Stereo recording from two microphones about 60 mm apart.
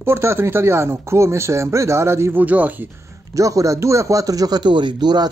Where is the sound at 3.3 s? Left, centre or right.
Right.